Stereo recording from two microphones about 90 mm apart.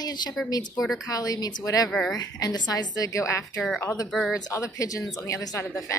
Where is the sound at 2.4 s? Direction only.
50° left (ahead or behind).